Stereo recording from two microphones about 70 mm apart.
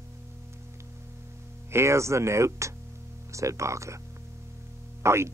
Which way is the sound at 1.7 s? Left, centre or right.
Right.